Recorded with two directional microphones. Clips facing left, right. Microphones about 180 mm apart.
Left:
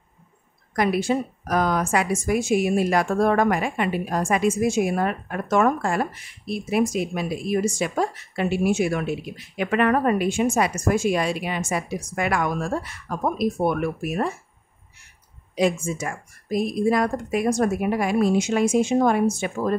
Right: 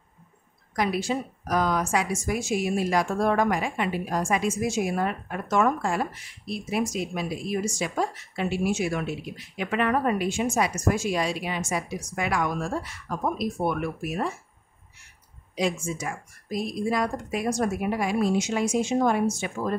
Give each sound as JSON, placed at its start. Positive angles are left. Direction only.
{"t": 0.7, "sound": "a woman's voice", "side_deg": 55}
{"t": 15.5, "sound": "a woman's voice", "side_deg": 55}